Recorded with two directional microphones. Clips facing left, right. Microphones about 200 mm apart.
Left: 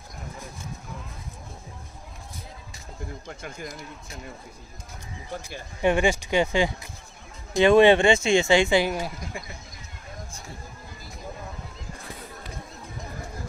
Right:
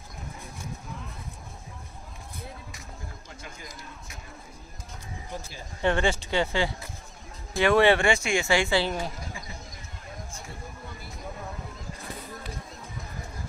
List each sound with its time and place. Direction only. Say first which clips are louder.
5.8 s speech: left 3 dB; 10° left (ahead or behind)